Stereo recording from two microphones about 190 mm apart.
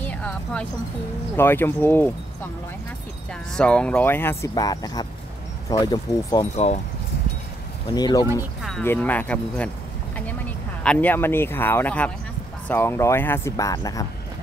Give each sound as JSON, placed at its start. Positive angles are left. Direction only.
{"t": 0.0, "sound": "a sound", "side_deg": 5}
{"t": 1.3, "sound": "speech", "side_deg": 10}
{"t": 3.5, "sound": "speech", "side_deg": 5}
{"t": 6.5, "sound": "speech", "side_deg": 35}
{"t": 7.9, "sound": "speech", "side_deg": 20}
{"t": 8.8, "sound": "speech", "side_deg": 10}
{"t": 10.8, "sound": "speech", "side_deg": 5}